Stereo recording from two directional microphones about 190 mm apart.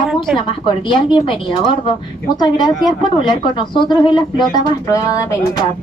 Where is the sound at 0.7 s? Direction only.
25° left (ahead or behind).